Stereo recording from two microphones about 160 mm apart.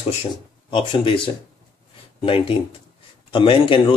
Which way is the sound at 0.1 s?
35° left (ahead or behind).